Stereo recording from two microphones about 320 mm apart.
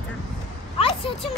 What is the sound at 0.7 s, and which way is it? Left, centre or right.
Speech, centre.